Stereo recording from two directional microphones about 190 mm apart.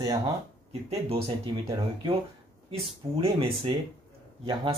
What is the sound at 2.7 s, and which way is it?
Speech, 30° right (ahead or behind).